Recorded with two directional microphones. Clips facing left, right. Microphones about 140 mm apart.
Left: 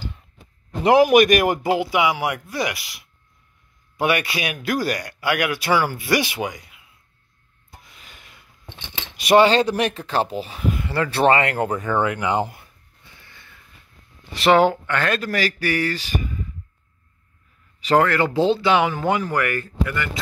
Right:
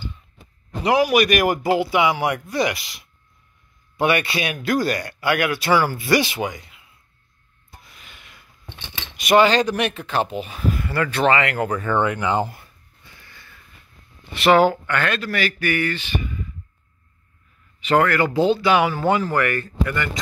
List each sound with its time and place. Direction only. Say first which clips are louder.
0.8 s a man's voice: left 4 dB; 50° left (ahead or behind)
1.3 s speech: even; 25° left (ahead or behind)
8.0 s gasp: even; 35° left (ahead or behind)
8.4 s speech: right 1 dB; 25° left (ahead or behind)
10.6 s speech: even; 20° left (ahead or behind)
11.8 s speech: right 1 dB; 5° left (ahead or behind)
13.1 s sniff: right 1 dB; 20° left (ahead or behind)
14.4 s speech: even; 25° left (ahead or behind)
17.7 s speech: even; 35° left (ahead or behind); by 20.1 s 5° left (ahead or behind)